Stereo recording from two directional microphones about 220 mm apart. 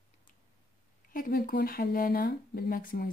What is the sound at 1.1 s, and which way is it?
Speech, 40° left (ahead or behind).